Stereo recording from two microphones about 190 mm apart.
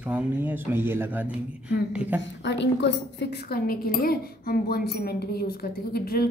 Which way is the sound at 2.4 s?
65° left (ahead or behind).